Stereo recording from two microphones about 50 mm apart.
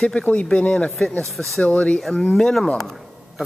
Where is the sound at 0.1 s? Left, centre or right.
Left.